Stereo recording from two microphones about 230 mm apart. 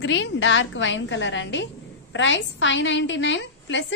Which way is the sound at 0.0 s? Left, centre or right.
Left.